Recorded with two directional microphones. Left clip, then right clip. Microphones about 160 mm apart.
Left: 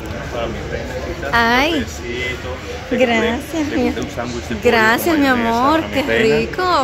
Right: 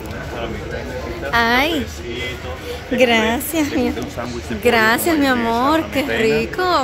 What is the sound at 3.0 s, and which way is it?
Speech, 20° right (ahead or behind).